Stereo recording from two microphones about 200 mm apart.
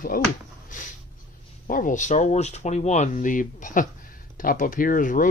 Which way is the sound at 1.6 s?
40° left (ahead or behind).